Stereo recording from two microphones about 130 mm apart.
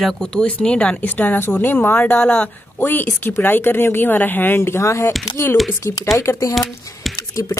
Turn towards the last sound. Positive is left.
turn(degrees=30)  # may be behind; listen again after turning